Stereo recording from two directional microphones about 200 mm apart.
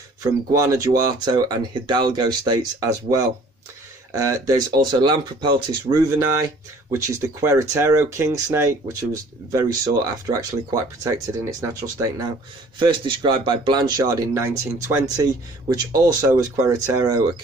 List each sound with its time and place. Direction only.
0.2 s speech: 15° right (ahead or behind)